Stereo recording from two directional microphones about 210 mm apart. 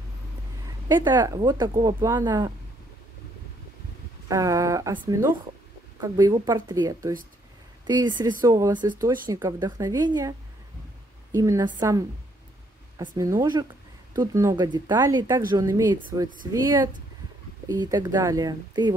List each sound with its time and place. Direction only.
0.8 s speech: 20° right (ahead or behind)
4.3 s speech: 15° right (ahead or behind)
11.3 s speech: 15° right (ahead or behind)
13.0 s speech: 20° right (ahead or behind)
17.6 s speech: 20° right (ahead or behind)